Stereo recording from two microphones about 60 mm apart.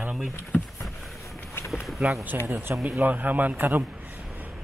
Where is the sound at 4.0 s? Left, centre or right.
Right.